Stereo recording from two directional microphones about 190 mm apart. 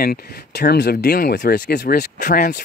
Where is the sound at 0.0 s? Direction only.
55° left (ahead or behind).